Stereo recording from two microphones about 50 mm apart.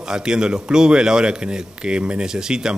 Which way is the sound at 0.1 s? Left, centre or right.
Centre.